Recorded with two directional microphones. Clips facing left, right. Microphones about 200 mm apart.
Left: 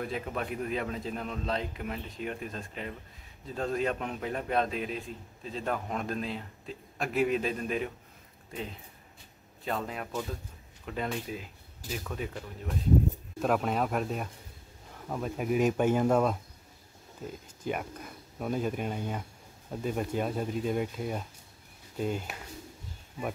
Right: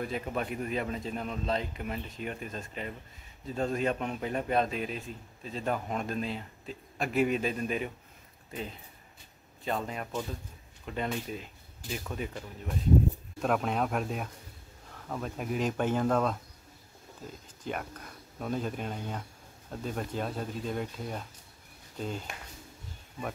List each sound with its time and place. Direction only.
0.0 s a man's voice: centre (ahead or behind)
9.7 s a man's voice: centre (ahead or behind)
17.6 s speech: 5° left (ahead or behind)